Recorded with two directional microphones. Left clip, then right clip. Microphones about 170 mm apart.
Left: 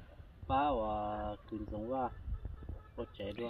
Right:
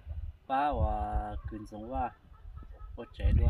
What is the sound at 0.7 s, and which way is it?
Speech, 25° right (ahead or behind).